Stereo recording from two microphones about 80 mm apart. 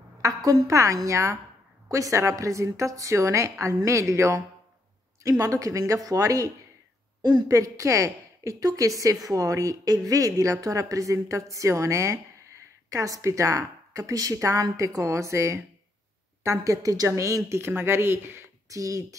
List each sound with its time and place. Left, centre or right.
0.2 s a woman's voice: right
5.4 s a woman's voice: right
7.2 s a woman's voice: right
7.4 s a woman's voice: right
18.7 s a woman's voice: right